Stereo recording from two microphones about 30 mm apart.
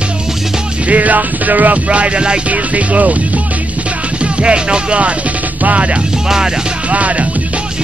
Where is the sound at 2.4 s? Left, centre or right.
Right.